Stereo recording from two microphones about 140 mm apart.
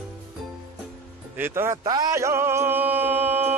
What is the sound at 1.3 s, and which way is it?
Speech, 15° right (ahead or behind).